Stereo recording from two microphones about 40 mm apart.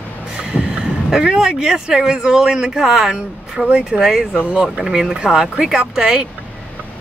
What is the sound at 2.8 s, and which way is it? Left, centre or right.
A woman's voice, centre.